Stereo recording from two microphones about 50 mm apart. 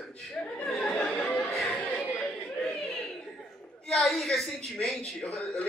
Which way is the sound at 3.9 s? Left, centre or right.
Centre.